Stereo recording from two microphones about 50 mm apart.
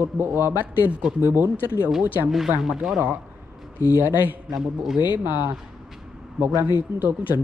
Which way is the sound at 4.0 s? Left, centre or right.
Right.